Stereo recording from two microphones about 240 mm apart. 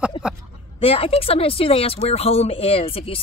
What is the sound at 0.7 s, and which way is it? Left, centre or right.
Speech, left.